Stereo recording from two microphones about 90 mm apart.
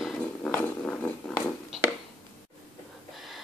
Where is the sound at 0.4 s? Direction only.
20° left (ahead or behind).